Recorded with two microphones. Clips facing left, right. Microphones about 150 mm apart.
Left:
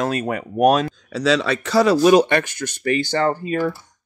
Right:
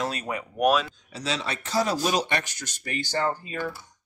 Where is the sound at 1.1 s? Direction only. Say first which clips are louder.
Left 12 dB; 90° left.